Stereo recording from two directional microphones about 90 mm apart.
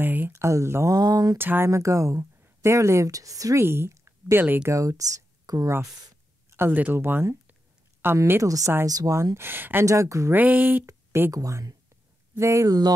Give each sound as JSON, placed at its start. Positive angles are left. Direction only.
{"t": 0.0, "sound": "speech", "side_deg": -20}
{"t": 0.9, "sound": "a sound", "side_deg": -45}
{"t": 1.4, "sound": "speech", "side_deg": -25}
{"t": 1.7, "sound": "speech", "side_deg": -35}
{"t": 3.6, "sound": "speech", "side_deg": -25}
{"t": 4.7, "sound": "speech", "side_deg": -40}
{"t": 9.8, "sound": "speech", "side_deg": -35}
{"t": 10.3, "sound": "speech", "side_deg": -20}
{"t": 11.3, "sound": "speech", "side_deg": -40}